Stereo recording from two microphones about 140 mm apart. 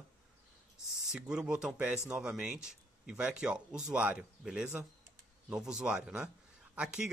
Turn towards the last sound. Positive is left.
turn(degrees=-5)  # may be behind; listen again after turning